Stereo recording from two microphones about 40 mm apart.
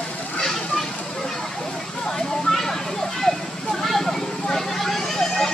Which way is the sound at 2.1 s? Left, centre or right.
Centre.